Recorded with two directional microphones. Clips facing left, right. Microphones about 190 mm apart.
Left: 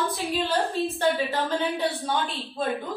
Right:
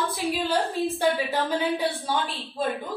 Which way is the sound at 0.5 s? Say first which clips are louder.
Even; 15° right (ahead or behind).